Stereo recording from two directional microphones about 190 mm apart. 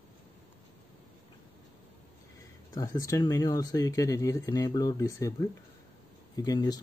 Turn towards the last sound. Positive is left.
turn(degrees=20)  # may be behind; listen again after turning